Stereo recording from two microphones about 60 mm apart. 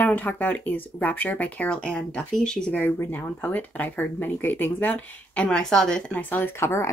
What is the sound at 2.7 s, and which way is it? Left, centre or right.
Speech, left.